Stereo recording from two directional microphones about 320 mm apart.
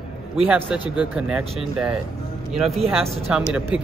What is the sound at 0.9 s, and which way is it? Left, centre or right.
Speech, centre.